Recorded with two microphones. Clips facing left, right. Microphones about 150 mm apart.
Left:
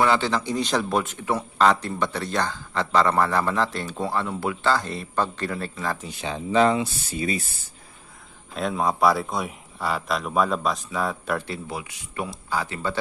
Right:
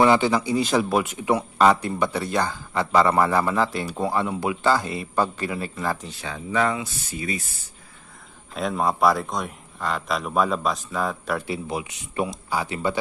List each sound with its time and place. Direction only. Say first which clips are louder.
0.0 s speech: right 3 dB; 15° right (ahead or behind)
6.0 s speech: left 3 dB; 25° left (ahead or behind)
8.5 s speech: even; centre (ahead or behind)
11.7 s speech: right 4 dB; 20° right (ahead or behind)